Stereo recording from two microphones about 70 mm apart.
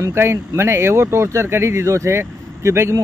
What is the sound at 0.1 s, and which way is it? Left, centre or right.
Speech, right.